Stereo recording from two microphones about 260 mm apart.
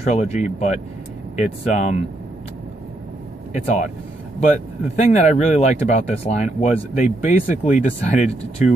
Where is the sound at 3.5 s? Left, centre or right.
Left.